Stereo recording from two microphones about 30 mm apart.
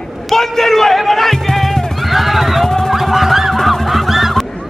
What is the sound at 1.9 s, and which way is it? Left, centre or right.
Music, centre.